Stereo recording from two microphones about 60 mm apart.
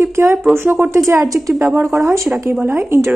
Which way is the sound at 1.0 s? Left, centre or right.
Right.